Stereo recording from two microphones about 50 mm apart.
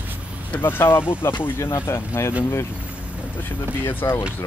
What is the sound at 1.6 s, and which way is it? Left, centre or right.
Speech, left.